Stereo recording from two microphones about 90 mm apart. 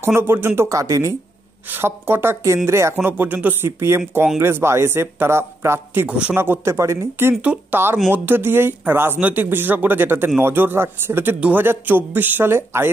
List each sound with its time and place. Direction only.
0.0 s speech: 25° right (ahead or behind)
1.7 s speech: 25° right (ahead or behind)
6.0 s speech: 15° right (ahead or behind)
6.3 s speech: 25° right (ahead or behind)